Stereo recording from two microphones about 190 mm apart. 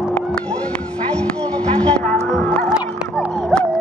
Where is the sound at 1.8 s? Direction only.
5° left (ahead or behind).